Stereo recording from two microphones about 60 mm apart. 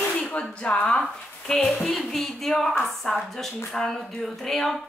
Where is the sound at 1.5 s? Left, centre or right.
Centre.